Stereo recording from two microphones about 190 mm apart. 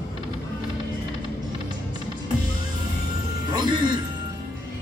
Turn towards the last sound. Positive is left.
turn(degrees=-25)  # may be behind; listen again after turning